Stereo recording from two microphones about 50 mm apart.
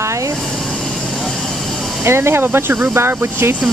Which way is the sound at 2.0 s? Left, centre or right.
Right.